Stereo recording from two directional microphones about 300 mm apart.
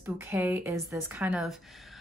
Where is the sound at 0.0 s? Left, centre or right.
Centre.